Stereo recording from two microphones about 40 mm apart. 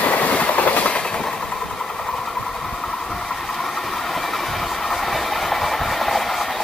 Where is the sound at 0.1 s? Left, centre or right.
Left.